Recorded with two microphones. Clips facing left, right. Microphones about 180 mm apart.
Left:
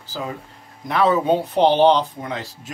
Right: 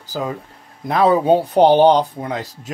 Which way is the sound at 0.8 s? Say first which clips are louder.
Right 3 dB; 35° right (ahead or behind).